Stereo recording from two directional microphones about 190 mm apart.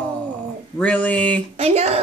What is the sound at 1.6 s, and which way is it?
Speech, 35° right (ahead or behind).